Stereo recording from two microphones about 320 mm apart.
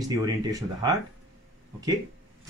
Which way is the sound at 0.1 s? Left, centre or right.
Centre.